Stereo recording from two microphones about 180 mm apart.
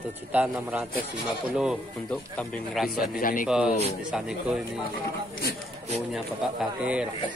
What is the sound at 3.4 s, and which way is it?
Speech, 5° right (ahead or behind).